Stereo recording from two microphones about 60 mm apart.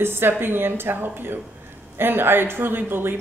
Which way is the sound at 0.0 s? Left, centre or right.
Right.